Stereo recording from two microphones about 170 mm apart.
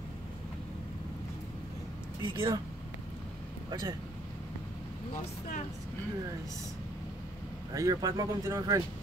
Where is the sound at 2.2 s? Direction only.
25° right (ahead or behind).